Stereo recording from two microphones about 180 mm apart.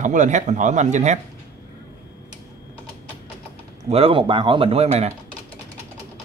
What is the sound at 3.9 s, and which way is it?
A man's voice, 30° right (ahead or behind).